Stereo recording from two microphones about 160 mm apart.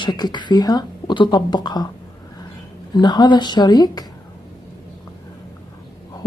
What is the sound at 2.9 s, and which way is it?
A woman's voice, 25° left (ahead or behind).